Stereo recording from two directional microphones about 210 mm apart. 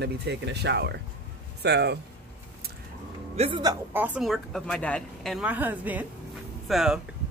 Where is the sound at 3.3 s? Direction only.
30° right (ahead or behind).